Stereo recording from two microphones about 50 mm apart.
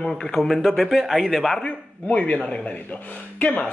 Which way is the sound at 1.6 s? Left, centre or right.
Left.